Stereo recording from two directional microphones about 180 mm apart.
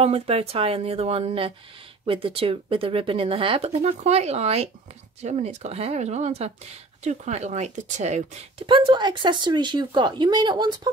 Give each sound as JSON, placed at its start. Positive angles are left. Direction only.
{"t": 0.0, "sound": "speech", "side_deg": -35}
{"t": 8.6, "sound": "speech", "side_deg": -25}